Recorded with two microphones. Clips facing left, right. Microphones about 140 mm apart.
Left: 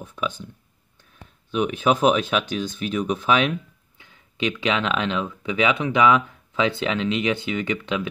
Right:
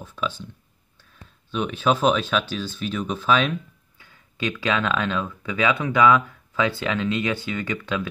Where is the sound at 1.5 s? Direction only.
15° left (ahead or behind).